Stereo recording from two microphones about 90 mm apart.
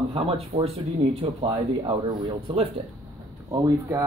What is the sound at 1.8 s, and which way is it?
Speech, 75° right (ahead or behind).